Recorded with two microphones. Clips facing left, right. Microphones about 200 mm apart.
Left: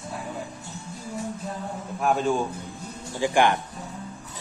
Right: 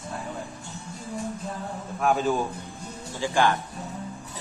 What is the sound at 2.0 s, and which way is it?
Speech, centre (ahead or behind).